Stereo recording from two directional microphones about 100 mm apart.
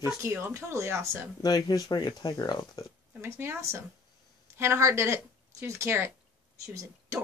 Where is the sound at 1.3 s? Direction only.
40° left (ahead or behind).